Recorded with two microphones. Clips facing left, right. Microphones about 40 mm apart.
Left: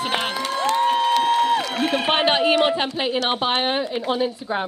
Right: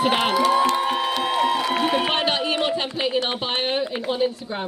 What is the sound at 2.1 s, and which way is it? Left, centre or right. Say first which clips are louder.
Speech: left 4 dB; left.